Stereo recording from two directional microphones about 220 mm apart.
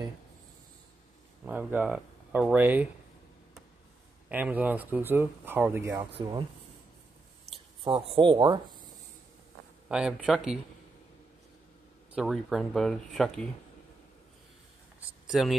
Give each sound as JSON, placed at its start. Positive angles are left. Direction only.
{"t": 1.4, "sound": "speech", "side_deg": -5}
{"t": 4.3, "sound": "speech", "side_deg": -5}
{"t": 7.5, "sound": "speech", "side_deg": -25}
{"t": 9.8, "sound": "speech", "side_deg": -5}
{"t": 12.1, "sound": "speech", "side_deg": 0}
{"t": 15.0, "sound": "a sound", "side_deg": 0}